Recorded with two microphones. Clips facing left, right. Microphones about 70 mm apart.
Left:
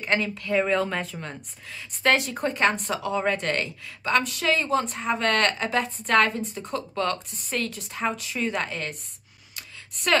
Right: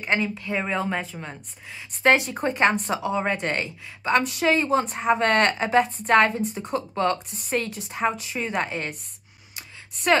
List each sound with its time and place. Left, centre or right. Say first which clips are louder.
0.0 s speech: right 1 dB; centre
10.1 s speech: right 2 dB; centre